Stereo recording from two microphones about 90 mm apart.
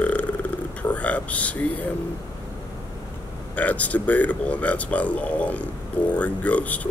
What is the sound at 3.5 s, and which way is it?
Speech, 15° left (ahead or behind).